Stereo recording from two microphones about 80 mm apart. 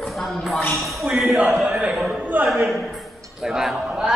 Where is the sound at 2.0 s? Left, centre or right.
Centre.